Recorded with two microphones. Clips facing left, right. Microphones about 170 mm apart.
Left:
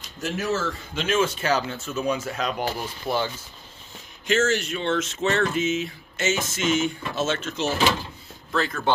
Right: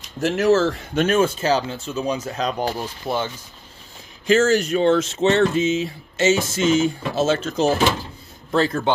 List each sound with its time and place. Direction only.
0.2 s speech: 85° right
0.9 s speech: 50° right (ahead or behind)
1.4 s speech: 30° right (ahead or behind)
4.3 s speech: 35° right (ahead or behind)